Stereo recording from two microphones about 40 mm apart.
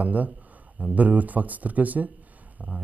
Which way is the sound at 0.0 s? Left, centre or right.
Right.